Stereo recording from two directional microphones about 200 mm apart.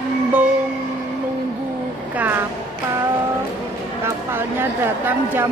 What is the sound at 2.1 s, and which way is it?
Speech, 10° right (ahead or behind).